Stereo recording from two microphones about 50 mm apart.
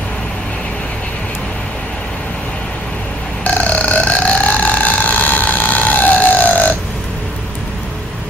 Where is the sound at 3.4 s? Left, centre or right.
Left.